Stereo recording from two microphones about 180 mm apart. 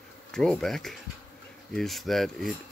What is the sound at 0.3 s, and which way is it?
Speech, 5° left (ahead or behind).